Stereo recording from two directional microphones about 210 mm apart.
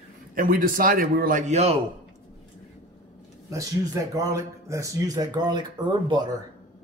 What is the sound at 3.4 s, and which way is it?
Speech, 15° right (ahead or behind).